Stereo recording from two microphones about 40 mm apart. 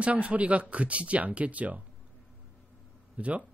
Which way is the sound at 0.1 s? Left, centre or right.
Right.